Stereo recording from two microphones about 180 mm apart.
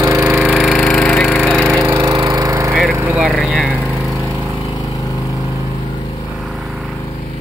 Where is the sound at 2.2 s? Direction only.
15° right (ahead or behind).